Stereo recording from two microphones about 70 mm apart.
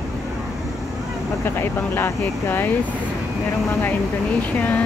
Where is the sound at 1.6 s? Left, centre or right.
Left.